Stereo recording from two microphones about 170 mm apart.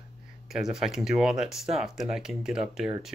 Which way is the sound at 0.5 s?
5° right (ahead or behind).